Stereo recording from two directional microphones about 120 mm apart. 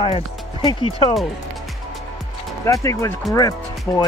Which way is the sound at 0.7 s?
50° left (ahead or behind).